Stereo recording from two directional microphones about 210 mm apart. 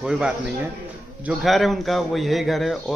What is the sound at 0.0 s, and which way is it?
A man's voice, 5° right (ahead or behind).